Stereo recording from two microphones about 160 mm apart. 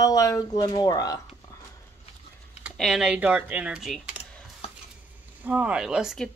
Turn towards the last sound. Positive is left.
turn(degrees=-5)  # may be behind; listen again after turning